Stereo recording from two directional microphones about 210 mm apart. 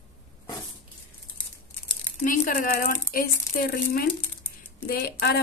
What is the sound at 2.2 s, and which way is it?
A woman's voice, 40° left (ahead or behind).